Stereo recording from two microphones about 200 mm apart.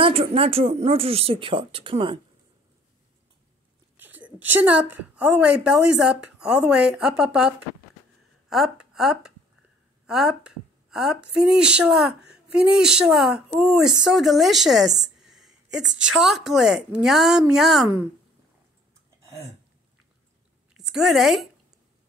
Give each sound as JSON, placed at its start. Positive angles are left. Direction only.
{"t": 0.0, "sound": "speech", "side_deg": -30}
{"t": 3.9, "sound": "a sound", "side_deg": -10}
{"t": 5.6, "sound": "a woman's voice", "side_deg": -5}
{"t": 20.7, "sound": "a woman's voice", "side_deg": 0}